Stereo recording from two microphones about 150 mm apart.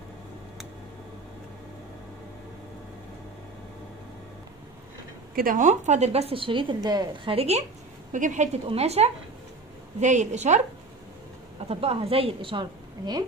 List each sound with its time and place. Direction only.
5.3 s a woman's voice: 70° right (ahead or behind); by 7.3 s 25° right (ahead or behind)
7.3 s a woman's voice: 45° right (ahead or behind)
8.1 s a woman's voice: 55° right (ahead or behind)
8.6 s a woman's voice: 45° right (ahead or behind)
11.6 s a woman's voice: 40° right (ahead or behind)